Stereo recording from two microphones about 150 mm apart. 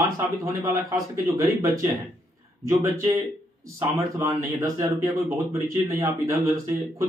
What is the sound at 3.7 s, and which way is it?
A man's voice, 20° right (ahead or behind).